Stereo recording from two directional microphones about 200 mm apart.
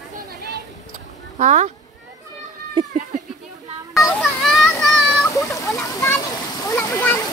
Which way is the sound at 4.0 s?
Centre (ahead or behind).